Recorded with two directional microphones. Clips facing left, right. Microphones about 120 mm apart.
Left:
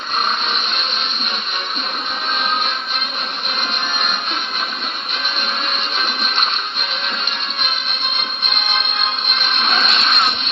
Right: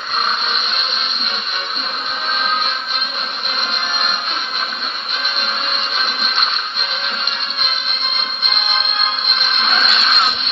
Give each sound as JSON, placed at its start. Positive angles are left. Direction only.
{"t": 5.9, "sound": "music", "side_deg": -10}
{"t": 9.7, "sound": "music", "side_deg": 20}